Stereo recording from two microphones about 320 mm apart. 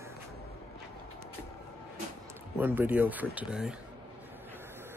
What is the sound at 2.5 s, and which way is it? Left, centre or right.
Speech, centre.